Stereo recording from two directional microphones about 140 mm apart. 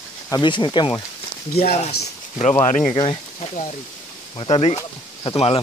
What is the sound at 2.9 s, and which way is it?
Speech, 35° left (ahead or behind).